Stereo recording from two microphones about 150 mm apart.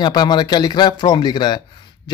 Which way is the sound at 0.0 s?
30° left (ahead or behind).